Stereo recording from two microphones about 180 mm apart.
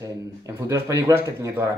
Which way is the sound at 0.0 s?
20° right (ahead or behind).